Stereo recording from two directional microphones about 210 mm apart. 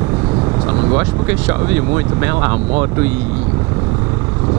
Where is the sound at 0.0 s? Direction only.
20° right (ahead or behind).